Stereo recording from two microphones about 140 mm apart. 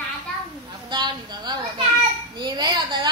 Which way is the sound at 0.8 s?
30° right (ahead or behind).